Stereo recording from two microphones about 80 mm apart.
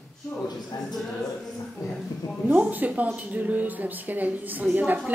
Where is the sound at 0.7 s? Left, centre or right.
Left.